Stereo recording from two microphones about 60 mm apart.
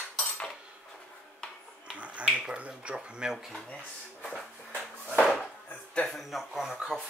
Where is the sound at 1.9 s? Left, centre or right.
Right.